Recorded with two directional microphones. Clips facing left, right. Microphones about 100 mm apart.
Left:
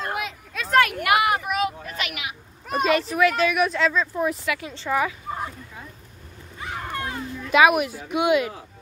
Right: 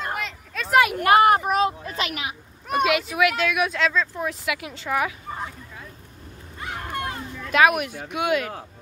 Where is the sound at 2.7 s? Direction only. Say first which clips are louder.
Even; 5° right (ahead or behind).